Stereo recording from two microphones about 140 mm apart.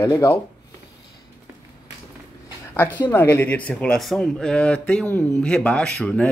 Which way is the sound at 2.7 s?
15° left (ahead or behind).